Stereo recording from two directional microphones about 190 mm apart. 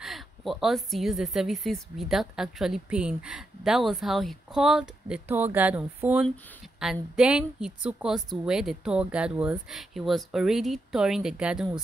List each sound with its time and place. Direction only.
0.0 s a woman's voice: centre (ahead or behind)